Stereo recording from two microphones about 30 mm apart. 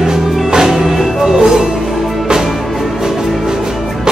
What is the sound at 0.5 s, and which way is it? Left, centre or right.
Music, centre.